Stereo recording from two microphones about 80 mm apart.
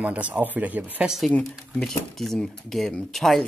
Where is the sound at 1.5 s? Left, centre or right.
Centre.